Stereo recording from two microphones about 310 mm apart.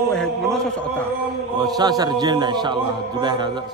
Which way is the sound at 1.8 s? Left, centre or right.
Centre.